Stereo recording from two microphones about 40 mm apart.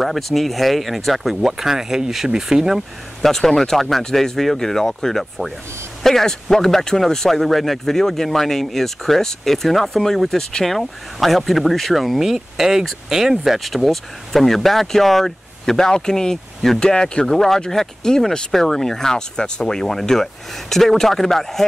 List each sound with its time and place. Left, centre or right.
0.0 s speech: centre
3.2 s speech: centre